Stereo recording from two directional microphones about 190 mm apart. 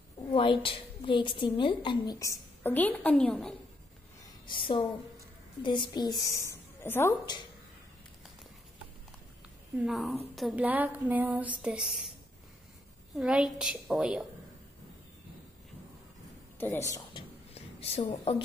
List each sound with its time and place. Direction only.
0.3 s a woman's voice: 25° left (ahead or behind); by 3.5 s 5° left (ahead or behind)
4.5 s a woman's voice: 25° left (ahead or behind)
9.8 s a woman's voice: centre (ahead or behind)
13.1 s a woman's voice: 5° right (ahead or behind)
16.5 s a woman's voice: 10° left (ahead or behind)
17.7 s a woman's voice: 30° left (ahead or behind)